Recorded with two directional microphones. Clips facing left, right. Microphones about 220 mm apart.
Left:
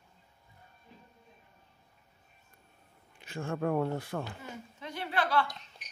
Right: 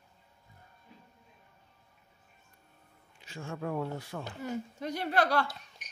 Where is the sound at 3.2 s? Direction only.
55° left (ahead or behind).